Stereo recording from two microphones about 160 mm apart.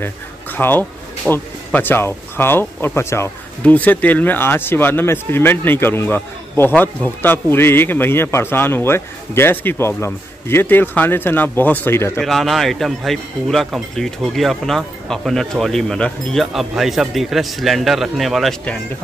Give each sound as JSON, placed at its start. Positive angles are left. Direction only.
{"t": 0.0, "sound": "a sound", "side_deg": 15}
{"t": 1.3, "sound": "speech", "side_deg": 15}
{"t": 12.2, "sound": "speech", "side_deg": 0}